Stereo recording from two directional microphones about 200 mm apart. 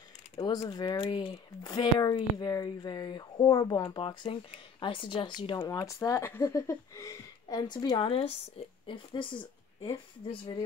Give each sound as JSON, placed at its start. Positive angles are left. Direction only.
{"t": 0.4, "sound": "speech", "side_deg": 20}